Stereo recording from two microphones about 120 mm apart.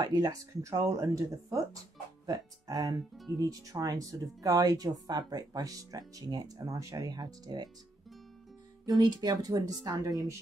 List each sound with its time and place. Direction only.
0.0 s speech: 35° right (ahead or behind)
8.8 s speech: 35° right (ahead or behind)